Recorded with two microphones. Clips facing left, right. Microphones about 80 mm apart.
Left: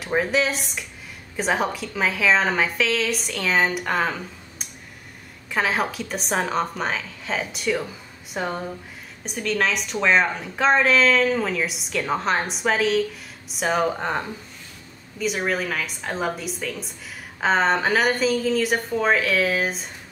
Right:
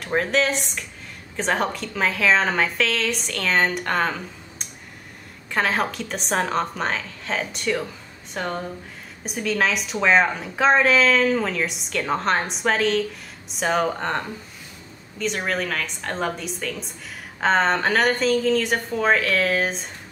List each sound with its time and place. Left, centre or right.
0.0 s a woman's voice: centre